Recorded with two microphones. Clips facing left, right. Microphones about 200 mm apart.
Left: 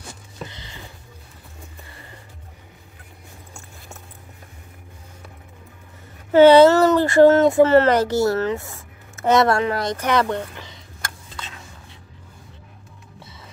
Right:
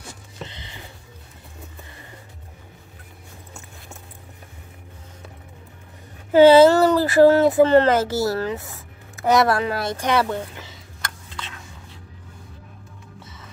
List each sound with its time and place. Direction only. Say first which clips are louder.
0.4 s music: left 1 dB; 20° right (ahead or behind)
6.3 s speech: left 1 dB; 10° right (ahead or behind)
8.6 s a sound: even; centre (ahead or behind)
9.6 s speech: left 2 dB; 10° right (ahead or behind)